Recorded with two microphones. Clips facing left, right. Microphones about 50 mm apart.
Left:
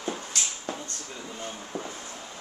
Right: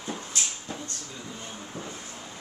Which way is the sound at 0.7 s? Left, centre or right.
Left.